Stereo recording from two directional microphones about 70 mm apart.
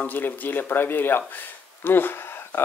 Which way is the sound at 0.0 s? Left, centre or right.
Left.